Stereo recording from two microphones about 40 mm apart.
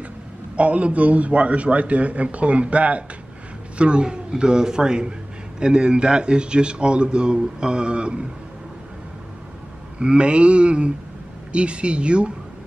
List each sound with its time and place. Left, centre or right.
0.6 s a man's voice: right
9.9 s speech: right